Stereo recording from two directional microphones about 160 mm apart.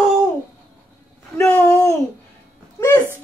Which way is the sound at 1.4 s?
20° left (ahead or behind).